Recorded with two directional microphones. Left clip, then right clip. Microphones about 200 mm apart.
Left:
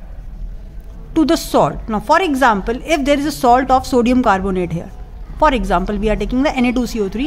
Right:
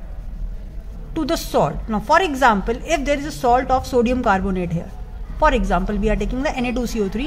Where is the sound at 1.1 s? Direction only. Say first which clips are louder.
Left 6 dB; 20° left (ahead or behind).